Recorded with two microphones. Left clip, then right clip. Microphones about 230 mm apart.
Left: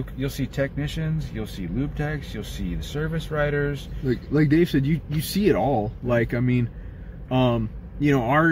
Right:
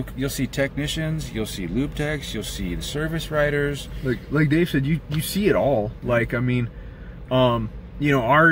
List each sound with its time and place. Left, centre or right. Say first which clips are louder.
0.2 s speech: right 3 dB; centre
4.1 s speech: left 1 dB; centre